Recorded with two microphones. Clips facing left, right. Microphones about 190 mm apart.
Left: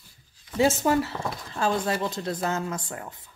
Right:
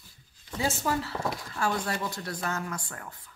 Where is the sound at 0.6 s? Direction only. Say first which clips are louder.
Left 8 dB; 25° left (ahead or behind).